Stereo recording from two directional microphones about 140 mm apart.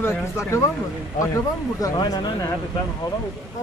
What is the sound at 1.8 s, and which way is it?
Speech, 30° left (ahead or behind).